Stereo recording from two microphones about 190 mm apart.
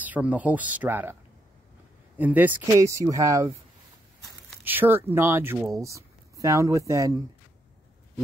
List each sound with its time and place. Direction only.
0.0 s speech: 10° right (ahead or behind)
2.1 s speech: 10° right (ahead or behind)
4.6 s speech: 10° right (ahead or behind)